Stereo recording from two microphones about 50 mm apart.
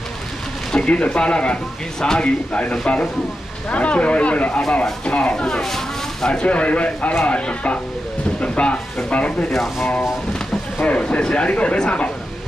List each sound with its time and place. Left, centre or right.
0.7 s speech: centre
5.3 s speech: centre
6.4 s speech: left
9.5 s speech: centre
10.8 s speech: left